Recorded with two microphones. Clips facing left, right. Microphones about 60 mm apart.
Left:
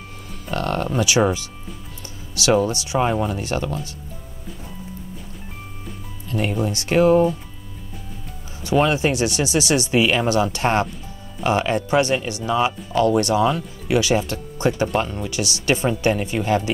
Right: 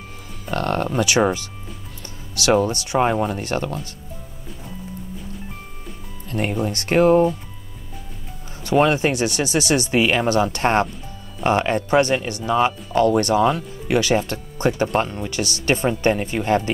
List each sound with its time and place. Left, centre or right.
0.5 s speech: right
2.3 s speech: right
6.2 s music: right
6.6 s speech: right
8.6 s speech: right